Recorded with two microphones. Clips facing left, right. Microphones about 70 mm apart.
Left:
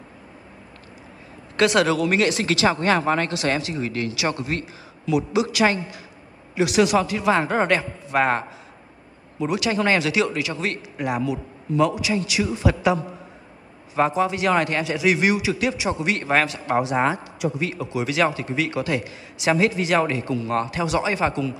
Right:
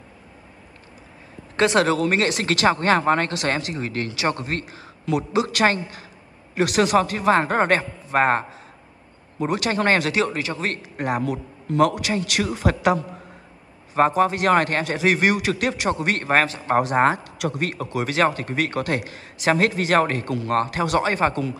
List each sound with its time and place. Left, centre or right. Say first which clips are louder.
1.6 s a man's voice: even; right